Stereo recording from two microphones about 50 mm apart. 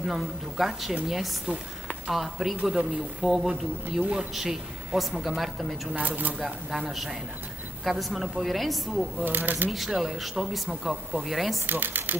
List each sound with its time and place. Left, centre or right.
0.0 s speech: centre
4.0 s speech: right
4.3 s speech: centre
5.9 s speech: right
6.3 s speech: centre
9.2 s speech: right
9.7 s speech: centre
11.6 s speech: right